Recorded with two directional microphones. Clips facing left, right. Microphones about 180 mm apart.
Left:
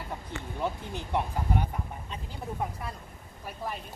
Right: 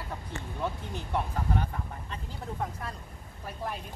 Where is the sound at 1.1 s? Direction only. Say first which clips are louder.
Left 1 dB; 15° left (ahead or behind).